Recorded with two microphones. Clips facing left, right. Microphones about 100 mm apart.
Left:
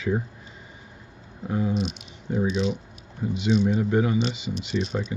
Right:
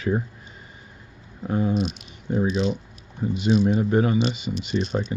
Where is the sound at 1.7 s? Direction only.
Centre (ahead or behind).